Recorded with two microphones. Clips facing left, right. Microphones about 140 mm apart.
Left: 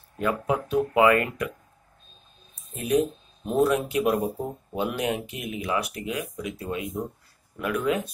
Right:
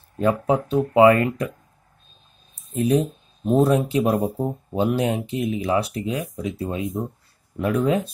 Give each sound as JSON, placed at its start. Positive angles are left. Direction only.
{"t": 0.2, "sound": "speech", "side_deg": -30}
{"t": 2.7, "sound": "speech", "side_deg": -30}